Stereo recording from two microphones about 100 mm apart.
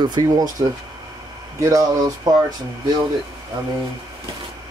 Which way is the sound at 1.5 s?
30° right (ahead or behind).